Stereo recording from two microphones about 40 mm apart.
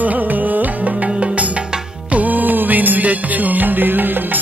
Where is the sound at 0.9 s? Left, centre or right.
Right.